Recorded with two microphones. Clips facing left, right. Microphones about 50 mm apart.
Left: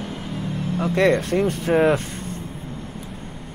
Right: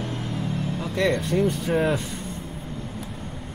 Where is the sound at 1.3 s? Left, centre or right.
Left.